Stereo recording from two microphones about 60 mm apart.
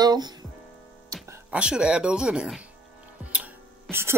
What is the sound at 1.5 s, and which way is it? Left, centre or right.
Speech, centre.